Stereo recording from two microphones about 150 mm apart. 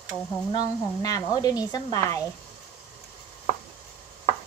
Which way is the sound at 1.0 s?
25° left (ahead or behind).